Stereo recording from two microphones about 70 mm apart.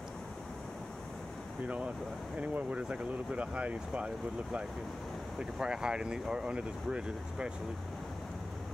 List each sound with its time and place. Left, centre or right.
2.3 s speech: centre